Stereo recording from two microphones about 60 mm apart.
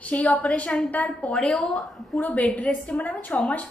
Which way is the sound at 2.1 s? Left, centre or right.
Left.